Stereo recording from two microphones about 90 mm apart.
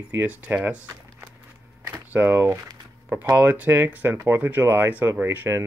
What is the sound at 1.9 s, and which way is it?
Speech, 25° right (ahead or behind).